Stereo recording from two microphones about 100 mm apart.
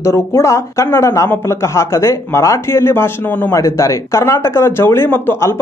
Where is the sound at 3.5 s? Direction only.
30° left (ahead or behind).